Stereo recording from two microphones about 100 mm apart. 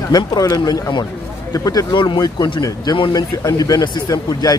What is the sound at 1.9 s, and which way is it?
Speech, 50° left (ahead or behind).